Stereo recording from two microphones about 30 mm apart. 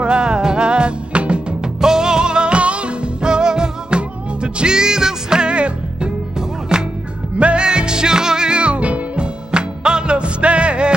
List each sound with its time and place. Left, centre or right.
0.0 s music: right
1.6 s music: right
5.5 s music: right
6.7 s music: right
7.3 s music: right
7.6 s music: right